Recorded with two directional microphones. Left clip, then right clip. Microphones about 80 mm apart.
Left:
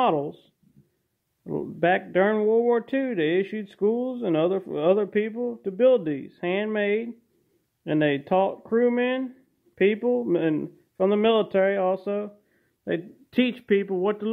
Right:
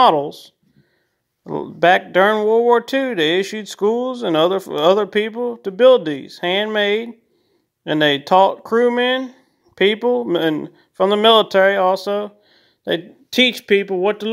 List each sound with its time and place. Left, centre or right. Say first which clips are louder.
1.4 s speech: right 9 dB; right
3.8 s speech: right 6 dB; right
11.0 s speech: right 9 dB; right
13.3 s speech: right 9 dB; right